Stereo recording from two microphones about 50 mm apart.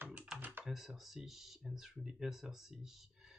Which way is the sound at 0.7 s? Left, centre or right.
Centre.